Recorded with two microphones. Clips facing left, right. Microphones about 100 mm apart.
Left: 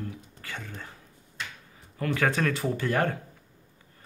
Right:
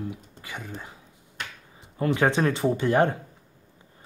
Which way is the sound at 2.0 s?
25° right (ahead or behind).